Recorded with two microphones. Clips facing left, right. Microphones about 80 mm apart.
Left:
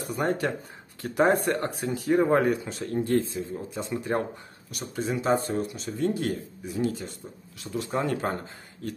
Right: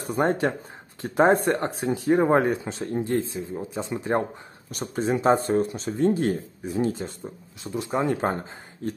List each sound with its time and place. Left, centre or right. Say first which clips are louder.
0.0 s speech: right 4 dB; right
4.6 s speech: right 5 dB; right
7.6 s speech: right 3 dB; centre